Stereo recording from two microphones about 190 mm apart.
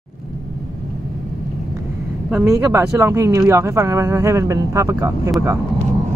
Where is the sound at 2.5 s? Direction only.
15° right (ahead or behind).